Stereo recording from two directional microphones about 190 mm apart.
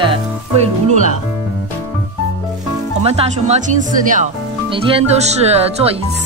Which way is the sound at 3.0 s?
35° right (ahead or behind).